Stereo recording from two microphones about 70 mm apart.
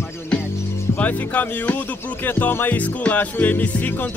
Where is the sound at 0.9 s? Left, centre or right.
Left.